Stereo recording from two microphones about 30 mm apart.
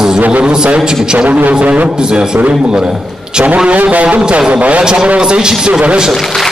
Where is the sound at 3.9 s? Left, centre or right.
Right.